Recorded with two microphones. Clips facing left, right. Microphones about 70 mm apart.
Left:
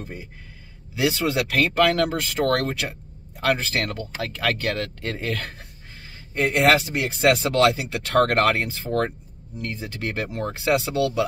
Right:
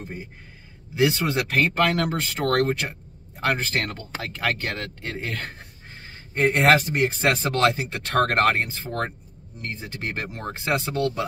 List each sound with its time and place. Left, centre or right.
0.9 s speech: right
6.3 s speech: right
8.2 s speech: right